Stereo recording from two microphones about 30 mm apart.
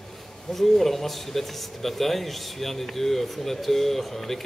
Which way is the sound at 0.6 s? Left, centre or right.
Centre.